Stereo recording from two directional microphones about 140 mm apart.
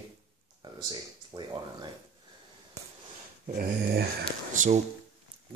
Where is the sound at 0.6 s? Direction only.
30° right (ahead or behind).